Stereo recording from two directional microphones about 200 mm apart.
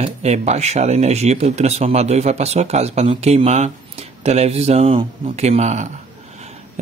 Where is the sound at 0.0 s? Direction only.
35° right (ahead or behind).